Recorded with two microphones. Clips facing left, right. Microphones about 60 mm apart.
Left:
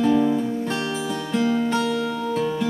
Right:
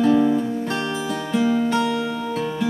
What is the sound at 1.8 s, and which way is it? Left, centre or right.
Music, centre.